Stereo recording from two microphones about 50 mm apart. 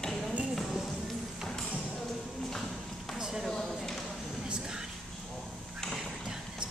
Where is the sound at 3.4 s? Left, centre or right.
Centre.